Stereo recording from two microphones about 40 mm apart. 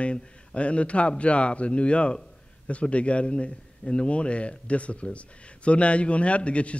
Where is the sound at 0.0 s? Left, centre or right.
Left.